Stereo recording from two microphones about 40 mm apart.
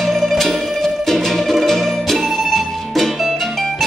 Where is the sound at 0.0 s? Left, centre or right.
Centre.